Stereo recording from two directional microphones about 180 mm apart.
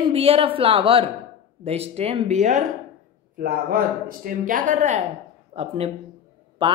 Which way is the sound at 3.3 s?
55° right (ahead or behind).